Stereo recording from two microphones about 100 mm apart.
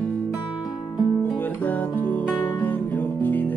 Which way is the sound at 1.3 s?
15° left (ahead or behind).